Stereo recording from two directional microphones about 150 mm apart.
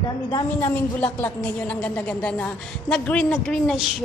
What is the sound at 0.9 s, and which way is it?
A woman's voice, 10° left (ahead or behind).